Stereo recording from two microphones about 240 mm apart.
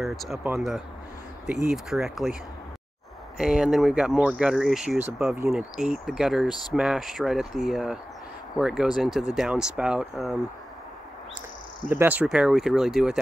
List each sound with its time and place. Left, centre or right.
0.0 s speech: centre
3.3 s speech: centre
11.9 s speech: centre